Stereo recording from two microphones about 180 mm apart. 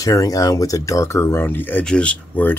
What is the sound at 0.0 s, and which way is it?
Speech, 20° left (ahead or behind).